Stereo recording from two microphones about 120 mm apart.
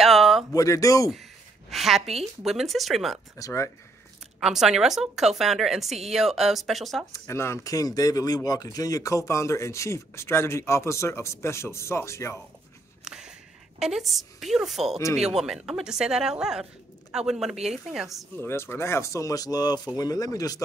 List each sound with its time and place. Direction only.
0.0 s a sound: centre (ahead or behind)
0.5 s speech: 30° left (ahead or behind)
1.7 s a woman's voice: centre (ahead or behind)
3.3 s speech: 25° left (ahead or behind)
4.4 s a woman's voice: 5° right (ahead or behind)
7.1 s speech: 20° left (ahead or behind)
13.0 s a sound: 5° right (ahead or behind)
13.7 s a woman's voice: 5° right (ahead or behind)
18.4 s speech: 20° left (ahead or behind)